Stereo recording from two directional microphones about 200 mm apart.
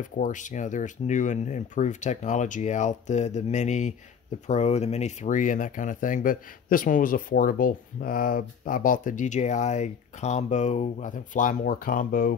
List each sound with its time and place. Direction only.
0.0 s speech: 40° left (ahead or behind)